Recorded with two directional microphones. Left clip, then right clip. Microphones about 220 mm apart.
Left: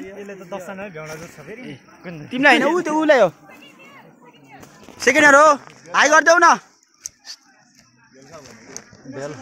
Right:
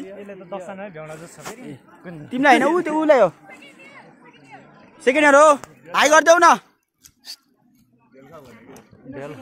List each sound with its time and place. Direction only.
0.0 s a man's voice: 45° left (ahead or behind)
2.2 s speech: 5° right (ahead or behind)
2.8 s speech: 10° left (ahead or behind)
5.0 s speech: centre (ahead or behind)
9.1 s speech: 45° left (ahead or behind)